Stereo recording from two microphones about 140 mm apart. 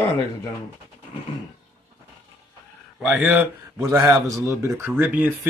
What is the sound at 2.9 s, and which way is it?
Speech, centre (ahead or behind).